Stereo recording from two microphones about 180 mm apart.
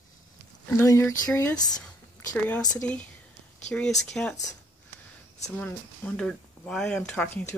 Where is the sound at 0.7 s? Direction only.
15° left (ahead or behind).